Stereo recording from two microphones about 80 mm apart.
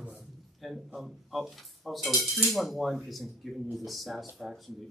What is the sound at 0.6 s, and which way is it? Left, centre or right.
Speech, centre.